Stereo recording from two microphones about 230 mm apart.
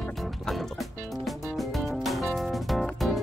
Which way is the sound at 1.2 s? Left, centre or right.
Centre.